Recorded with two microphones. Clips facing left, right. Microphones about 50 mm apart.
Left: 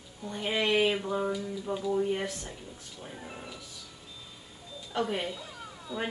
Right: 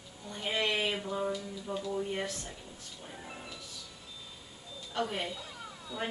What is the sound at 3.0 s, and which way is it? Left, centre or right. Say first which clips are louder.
Music: left 3 dB; centre.